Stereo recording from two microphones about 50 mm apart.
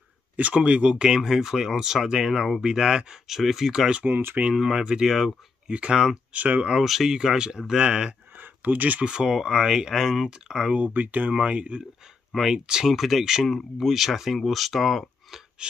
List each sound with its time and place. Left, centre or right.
0.4 s speech: right
6.8 s speech: centre
7.2 s speech: centre
8.4 s a sound: right
9.0 s speech: centre
10.9 s speech: right
12.4 s speech: centre
12.9 s speech: centre